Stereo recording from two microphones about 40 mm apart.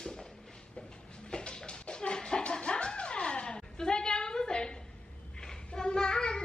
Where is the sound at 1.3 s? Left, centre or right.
Left.